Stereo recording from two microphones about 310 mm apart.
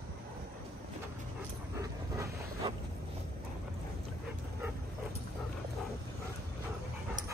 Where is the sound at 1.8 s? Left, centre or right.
Centre.